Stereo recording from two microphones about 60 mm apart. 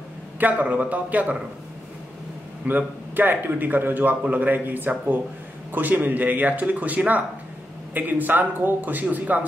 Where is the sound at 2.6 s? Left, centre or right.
Right.